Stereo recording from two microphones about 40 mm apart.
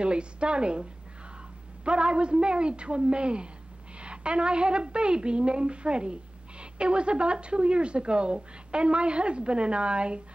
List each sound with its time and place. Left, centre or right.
0.0 s speech: right
1.9 s speech: right